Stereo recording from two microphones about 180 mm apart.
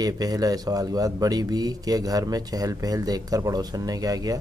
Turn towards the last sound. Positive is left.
turn(degrees=-20)  # may be behind; listen again after turning